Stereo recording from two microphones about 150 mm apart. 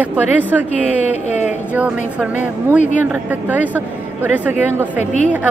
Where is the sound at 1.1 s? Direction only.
50° left (ahead or behind).